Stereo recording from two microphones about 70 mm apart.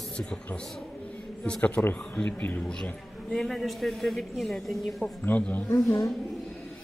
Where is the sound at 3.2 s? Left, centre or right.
Centre.